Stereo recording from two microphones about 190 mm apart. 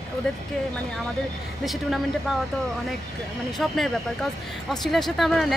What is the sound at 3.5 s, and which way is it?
Speech, centre (ahead or behind).